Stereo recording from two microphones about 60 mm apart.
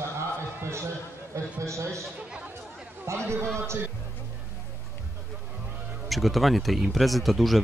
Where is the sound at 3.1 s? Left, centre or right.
Right.